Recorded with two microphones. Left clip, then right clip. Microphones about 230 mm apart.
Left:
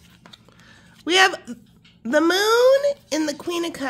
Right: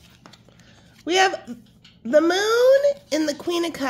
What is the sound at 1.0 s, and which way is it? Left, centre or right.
Speech, left.